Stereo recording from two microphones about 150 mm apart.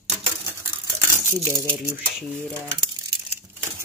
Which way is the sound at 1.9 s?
Centre (ahead or behind).